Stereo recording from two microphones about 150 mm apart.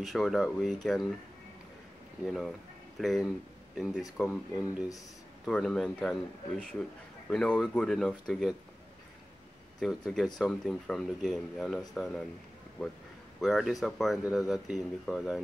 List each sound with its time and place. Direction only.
0.0 s speech: centre (ahead or behind)
2.2 s speech: centre (ahead or behind)
9.8 s speech: centre (ahead or behind)
13.4 s speech: centre (ahead or behind)